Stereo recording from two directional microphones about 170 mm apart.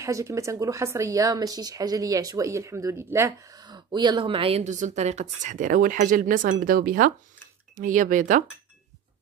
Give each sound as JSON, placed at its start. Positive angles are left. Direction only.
{"t": 0.0, "sound": "speech", "side_deg": -20}